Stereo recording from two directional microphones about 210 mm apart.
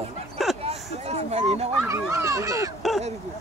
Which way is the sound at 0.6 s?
30° right (ahead or behind).